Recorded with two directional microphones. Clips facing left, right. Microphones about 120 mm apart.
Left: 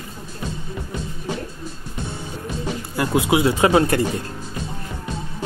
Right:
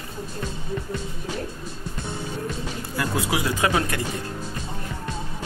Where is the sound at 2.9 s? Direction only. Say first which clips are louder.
Left 7 dB; 20° left (ahead or behind).